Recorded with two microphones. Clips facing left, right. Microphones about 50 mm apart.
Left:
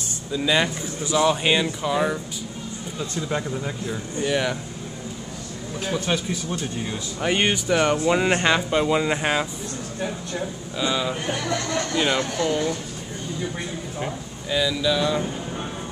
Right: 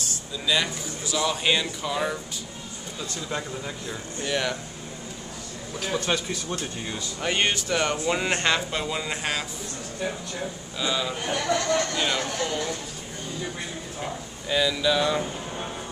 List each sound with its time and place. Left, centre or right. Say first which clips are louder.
0.3 s speech: left 5 dB; left
5.9 s speech: left 1 dB; centre
10.8 s speech: left 3 dB; centre
14.5 s speech: left 1 dB; centre